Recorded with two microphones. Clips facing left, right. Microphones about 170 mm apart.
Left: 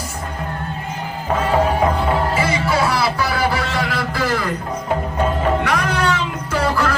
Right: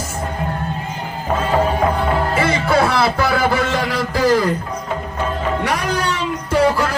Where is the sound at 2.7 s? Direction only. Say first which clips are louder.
Right 3 dB; 50° right (ahead or behind).